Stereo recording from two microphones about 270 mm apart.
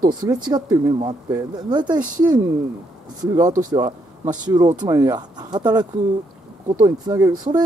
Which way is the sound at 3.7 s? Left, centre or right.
Centre.